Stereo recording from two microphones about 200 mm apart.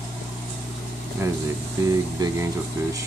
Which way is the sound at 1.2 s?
10° right (ahead or behind).